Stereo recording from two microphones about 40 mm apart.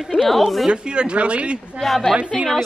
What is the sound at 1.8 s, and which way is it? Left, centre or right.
Speech, centre.